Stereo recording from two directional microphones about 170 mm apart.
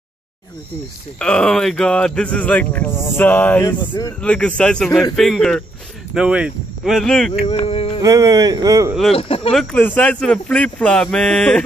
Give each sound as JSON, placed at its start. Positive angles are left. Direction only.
{"t": 1.2, "sound": "speech", "side_deg": 5}
{"t": 3.8, "sound": "speech", "side_deg": 25}
{"t": 4.2, "sound": "speech", "side_deg": 5}
{"t": 7.4, "sound": "a sound", "side_deg": 35}
{"t": 8.0, "sound": "speech", "side_deg": -20}
{"t": 9.1, "sound": "a sound", "side_deg": 35}
{"t": 9.5, "sound": "speech", "side_deg": 5}